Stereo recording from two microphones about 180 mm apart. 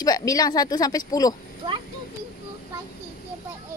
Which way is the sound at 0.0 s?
20° left (ahead or behind).